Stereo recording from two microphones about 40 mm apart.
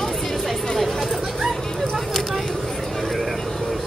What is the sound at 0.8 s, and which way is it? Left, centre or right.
Chatter, centre.